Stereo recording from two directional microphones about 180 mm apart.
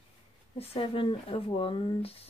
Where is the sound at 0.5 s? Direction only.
30° left (ahead or behind).